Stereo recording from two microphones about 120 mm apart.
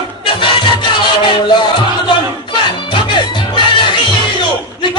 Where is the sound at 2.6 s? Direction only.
40° left (ahead or behind).